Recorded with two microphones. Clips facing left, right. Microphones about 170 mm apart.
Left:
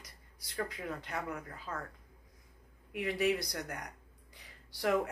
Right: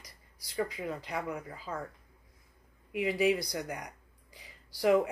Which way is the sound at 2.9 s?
5° right (ahead or behind).